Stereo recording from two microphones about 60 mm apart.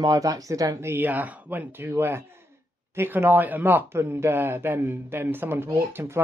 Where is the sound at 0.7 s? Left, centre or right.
Right.